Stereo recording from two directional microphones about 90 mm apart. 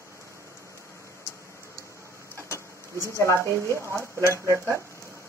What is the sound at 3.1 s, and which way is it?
Speech, 30° left (ahead or behind).